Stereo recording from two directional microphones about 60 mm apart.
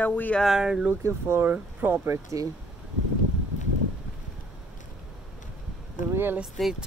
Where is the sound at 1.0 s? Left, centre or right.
Right.